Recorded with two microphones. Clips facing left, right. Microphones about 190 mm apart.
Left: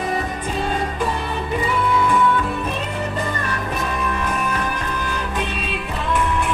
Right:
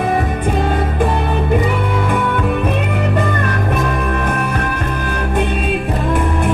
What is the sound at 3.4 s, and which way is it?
Music, 55° right (ahead or behind).